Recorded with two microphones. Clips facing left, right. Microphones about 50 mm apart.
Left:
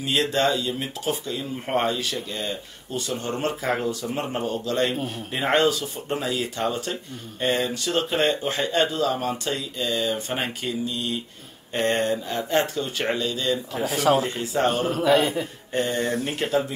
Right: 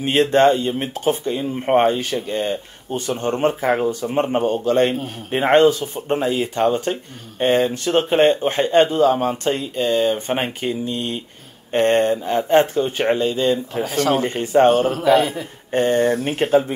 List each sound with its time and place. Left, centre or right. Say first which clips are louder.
0.0 s speech: right 8 dB; right
3.3 s speech: right 7 dB; right
13.7 s a man's voice: right 2 dB; centre
14.1 s speech: right 6 dB; right
14.7 s a man's voice: right 5 dB; centre
15.7 s speech: right 8 dB; right
16.0 s speech: right 7 dB; centre